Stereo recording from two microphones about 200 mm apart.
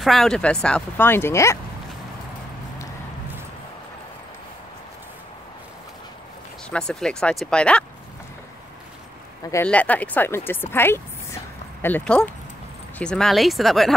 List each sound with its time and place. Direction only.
0.0 s speech: centre (ahead or behind)
6.7 s speech: 5° left (ahead or behind)
9.4 s speech: 15° left (ahead or behind)